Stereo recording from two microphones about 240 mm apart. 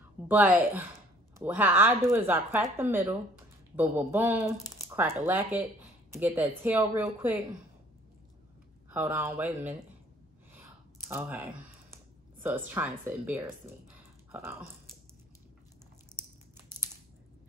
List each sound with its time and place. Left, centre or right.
0.3 s speech: centre
8.9 s speech: centre
10.5 s a sound: centre
12.4 s speech: centre